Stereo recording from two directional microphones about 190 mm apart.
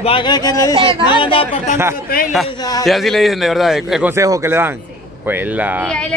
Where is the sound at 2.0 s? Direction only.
50° left (ahead or behind).